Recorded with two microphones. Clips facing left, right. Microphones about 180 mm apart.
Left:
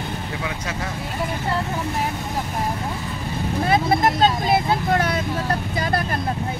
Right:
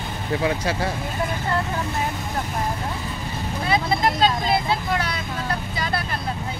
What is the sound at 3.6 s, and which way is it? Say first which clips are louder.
Speech: left 2 dB; 50° left (ahead or behind).